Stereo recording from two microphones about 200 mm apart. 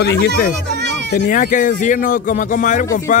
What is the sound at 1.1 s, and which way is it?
Speech, 40° left (ahead or behind).